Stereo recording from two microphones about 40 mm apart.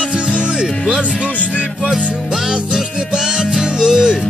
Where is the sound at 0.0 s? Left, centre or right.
Right.